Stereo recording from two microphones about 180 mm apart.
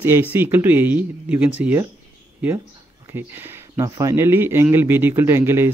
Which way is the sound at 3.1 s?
10° right (ahead or behind).